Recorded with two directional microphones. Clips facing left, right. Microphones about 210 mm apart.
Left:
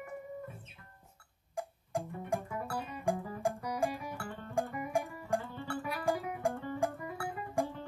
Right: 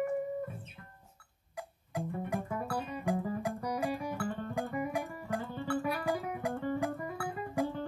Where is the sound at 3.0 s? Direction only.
45° left (ahead or behind).